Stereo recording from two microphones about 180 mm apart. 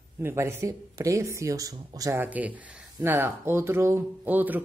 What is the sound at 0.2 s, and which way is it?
Speech, 15° right (ahead or behind).